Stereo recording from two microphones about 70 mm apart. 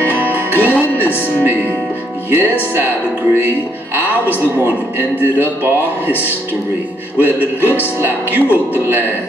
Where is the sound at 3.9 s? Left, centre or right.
Right.